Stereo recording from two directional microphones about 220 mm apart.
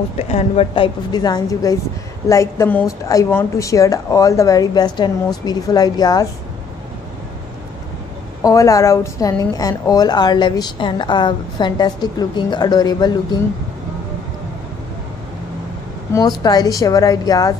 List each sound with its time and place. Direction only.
0.2 s a woman's voice: 30° left (ahead or behind)
8.4 s a woman's voice: 15° left (ahead or behind)
16.1 s a woman's voice: 15° left (ahead or behind)